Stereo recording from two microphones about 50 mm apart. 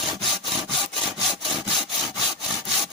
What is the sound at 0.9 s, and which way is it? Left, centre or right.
Sawing, centre.